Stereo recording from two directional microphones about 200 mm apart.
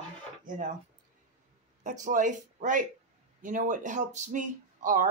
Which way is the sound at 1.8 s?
40° right (ahead or behind).